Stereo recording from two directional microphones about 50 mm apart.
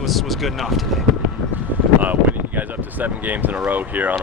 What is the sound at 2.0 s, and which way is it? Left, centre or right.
Speech, right.